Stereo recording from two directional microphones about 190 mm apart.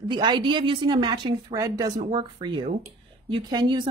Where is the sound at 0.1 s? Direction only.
25° right (ahead or behind).